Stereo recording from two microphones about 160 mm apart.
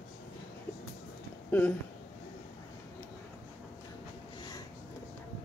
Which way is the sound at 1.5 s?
10° left (ahead or behind).